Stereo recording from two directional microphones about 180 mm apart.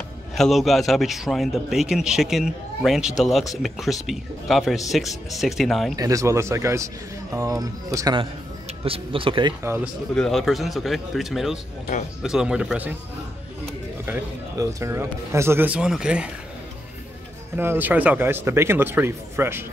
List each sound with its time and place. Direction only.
0.4 s a man's voice: centre (ahead or behind)
5.9 s speech: 20° right (ahead or behind)
9.6 s speech: 15° right (ahead or behind)
10.1 s a man's voice: centre (ahead or behind)
14.0 s speech: 15° right (ahead or behind)
17.6 s speech: 10° right (ahead or behind)